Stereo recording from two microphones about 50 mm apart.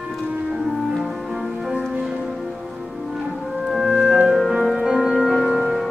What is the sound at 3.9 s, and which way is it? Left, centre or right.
Music, centre.